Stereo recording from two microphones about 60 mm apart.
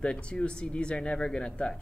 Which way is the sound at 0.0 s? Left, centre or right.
Centre.